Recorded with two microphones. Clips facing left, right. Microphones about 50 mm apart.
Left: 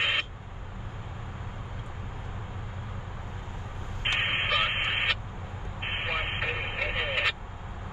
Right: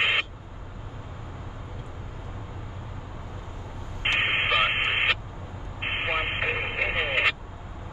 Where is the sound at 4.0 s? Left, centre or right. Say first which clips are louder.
Right 4 dB; right.